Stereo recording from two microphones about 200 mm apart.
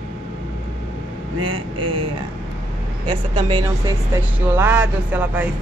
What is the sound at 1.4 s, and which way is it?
Speech, 25° right (ahead or behind).